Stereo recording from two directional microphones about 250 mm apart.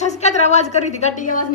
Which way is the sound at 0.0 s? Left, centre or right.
Left.